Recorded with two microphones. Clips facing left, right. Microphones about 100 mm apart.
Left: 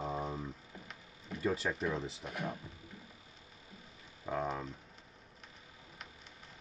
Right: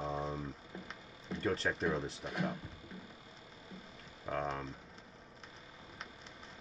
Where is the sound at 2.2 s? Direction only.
30° right (ahead or behind).